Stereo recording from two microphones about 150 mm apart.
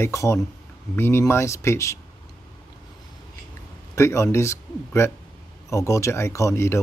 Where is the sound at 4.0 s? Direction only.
20° left (ahead or behind).